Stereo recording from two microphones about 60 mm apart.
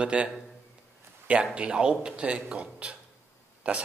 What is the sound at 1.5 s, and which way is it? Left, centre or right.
A man's voice, centre.